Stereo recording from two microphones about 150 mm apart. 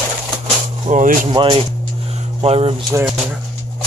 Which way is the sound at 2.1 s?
40° right (ahead or behind).